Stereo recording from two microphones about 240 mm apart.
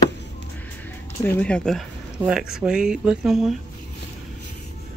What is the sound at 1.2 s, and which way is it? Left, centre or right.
Speech, centre.